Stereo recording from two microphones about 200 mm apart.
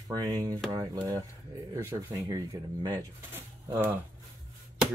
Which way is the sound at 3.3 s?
10° right (ahead or behind).